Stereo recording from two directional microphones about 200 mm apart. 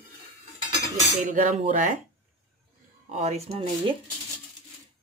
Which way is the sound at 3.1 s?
30° right (ahead or behind).